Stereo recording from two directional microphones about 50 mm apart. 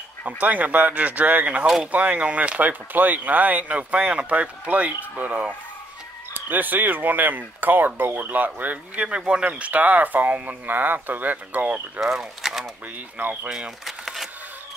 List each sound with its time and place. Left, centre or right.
0.4 s speech: right
9.0 s speech: centre; by 11.7 s right
12.0 s speech: centre
13.2 s speech: right
13.8 s a sound: centre